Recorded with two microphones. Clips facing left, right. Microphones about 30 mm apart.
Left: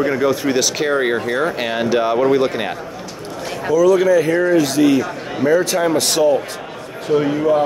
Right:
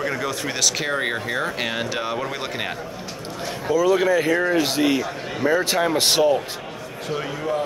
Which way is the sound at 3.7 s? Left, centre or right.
Right.